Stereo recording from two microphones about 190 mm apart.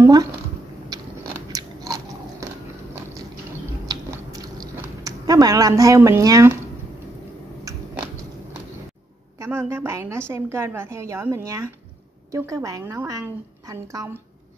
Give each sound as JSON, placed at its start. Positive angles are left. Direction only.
{"t": 0.0, "sound": "a sound", "side_deg": -15}
{"t": 1.5, "sound": "biting", "side_deg": -20}
{"t": 3.8, "sound": "biting", "side_deg": -20}
{"t": 9.4, "sound": "a woman's voice", "side_deg": -15}